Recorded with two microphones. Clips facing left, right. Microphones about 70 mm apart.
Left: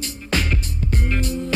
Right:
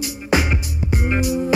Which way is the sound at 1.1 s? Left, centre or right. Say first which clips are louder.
Right 7 dB; centre.